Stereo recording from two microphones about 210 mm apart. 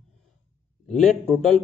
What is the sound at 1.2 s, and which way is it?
Speech, 5° right (ahead or behind).